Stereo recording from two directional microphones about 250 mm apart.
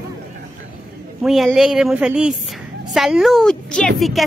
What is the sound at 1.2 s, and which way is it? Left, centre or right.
Speech, centre.